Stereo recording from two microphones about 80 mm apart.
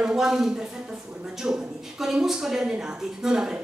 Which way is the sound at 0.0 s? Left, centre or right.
Centre.